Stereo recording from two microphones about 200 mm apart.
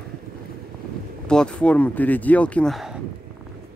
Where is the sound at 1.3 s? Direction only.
5° left (ahead or behind).